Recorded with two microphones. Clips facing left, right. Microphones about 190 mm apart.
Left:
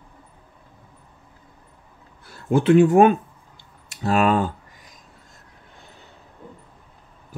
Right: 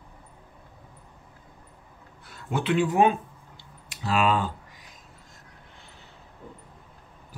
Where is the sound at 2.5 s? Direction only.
45° left (ahead or behind).